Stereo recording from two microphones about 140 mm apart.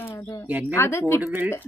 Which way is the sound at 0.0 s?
10° left (ahead or behind).